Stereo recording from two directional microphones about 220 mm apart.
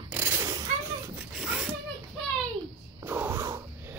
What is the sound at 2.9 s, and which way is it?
Wheeze, 10° right (ahead or behind).